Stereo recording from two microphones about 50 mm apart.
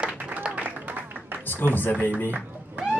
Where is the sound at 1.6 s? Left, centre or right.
Left.